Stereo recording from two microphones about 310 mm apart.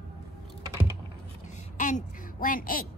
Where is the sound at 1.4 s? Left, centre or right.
Left.